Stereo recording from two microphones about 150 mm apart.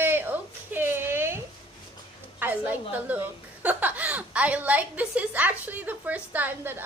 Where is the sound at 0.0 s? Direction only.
15° right (ahead or behind).